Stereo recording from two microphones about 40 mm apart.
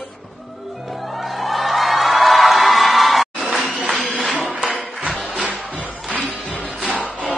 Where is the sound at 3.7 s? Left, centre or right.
Centre.